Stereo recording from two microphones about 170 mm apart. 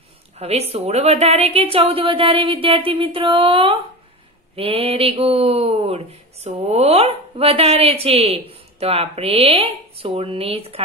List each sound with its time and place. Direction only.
0.4 s speech: 35° right (ahead or behind)